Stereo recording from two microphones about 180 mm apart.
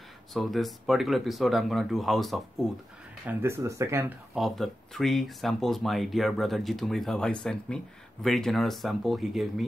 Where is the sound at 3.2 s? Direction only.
15° right (ahead or behind).